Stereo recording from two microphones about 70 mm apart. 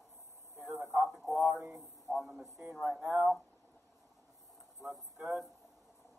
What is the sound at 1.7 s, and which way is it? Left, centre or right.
A man's voice, centre.